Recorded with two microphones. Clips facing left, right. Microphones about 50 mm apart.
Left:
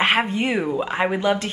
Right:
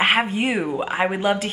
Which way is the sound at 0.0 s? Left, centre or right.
Centre.